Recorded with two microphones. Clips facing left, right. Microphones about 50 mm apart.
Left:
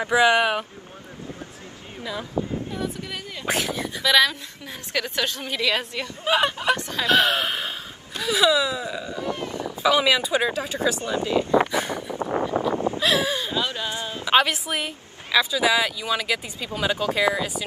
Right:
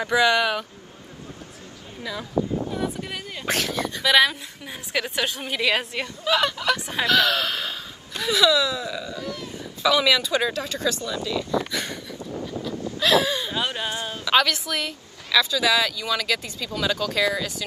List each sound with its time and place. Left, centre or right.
0.0 s speech: left
2.7 s a woman's voice: centre
3.4 s speech: centre
4.0 s a woman's voice: centre
6.2 s speech: left
6.8 s a woman's voice: centre
7.1 s speech: left
9.8 s speech: centre
11.0 s speech: left
11.7 s a sound: left
13.0 s a sound: left
13.6 s a sound: right
14.1 s speech: left